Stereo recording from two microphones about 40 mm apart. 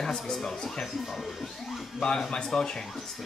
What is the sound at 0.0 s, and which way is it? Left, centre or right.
Speech, centre.